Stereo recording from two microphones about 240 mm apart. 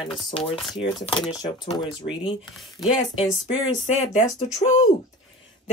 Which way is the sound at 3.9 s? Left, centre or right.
Left.